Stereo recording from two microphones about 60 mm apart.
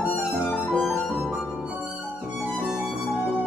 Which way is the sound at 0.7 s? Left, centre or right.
Centre.